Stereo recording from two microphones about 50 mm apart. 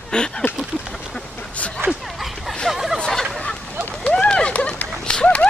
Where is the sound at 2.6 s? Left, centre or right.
Centre.